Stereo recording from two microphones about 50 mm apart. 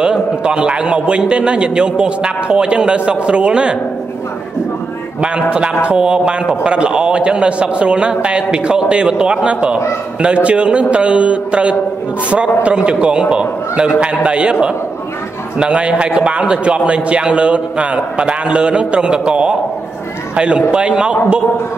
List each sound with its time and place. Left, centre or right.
0.0 s a man's voice: centre
5.2 s a man's voice: right